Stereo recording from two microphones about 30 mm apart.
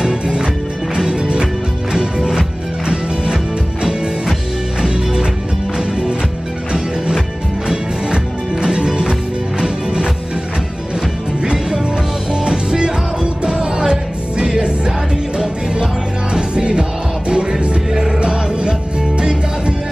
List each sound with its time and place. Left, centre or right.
0.0 s music: right
5.8 s music: right
7.6 s music: right
11.7 s music: right